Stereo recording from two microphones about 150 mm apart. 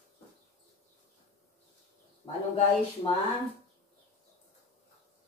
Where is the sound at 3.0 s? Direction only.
30° left (ahead or behind).